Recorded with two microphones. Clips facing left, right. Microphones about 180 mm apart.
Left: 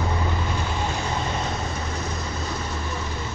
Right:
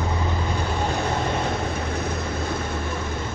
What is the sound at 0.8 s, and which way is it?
Vehicle, 55° right (ahead or behind).